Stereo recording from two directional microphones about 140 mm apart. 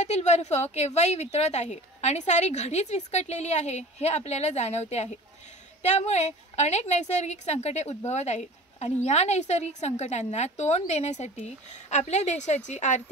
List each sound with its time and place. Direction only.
0.0 s speech: 55° left (ahead or behind)